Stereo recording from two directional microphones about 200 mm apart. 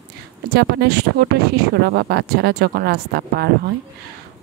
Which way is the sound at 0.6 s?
55° right (ahead or behind).